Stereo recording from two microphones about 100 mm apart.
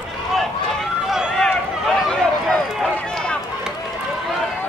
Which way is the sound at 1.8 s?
5° left (ahead or behind).